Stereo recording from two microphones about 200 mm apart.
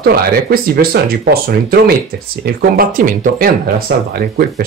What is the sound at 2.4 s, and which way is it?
Speech, 45° right (ahead or behind).